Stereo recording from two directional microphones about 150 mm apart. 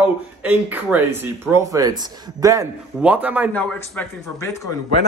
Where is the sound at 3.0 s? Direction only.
10° right (ahead or behind).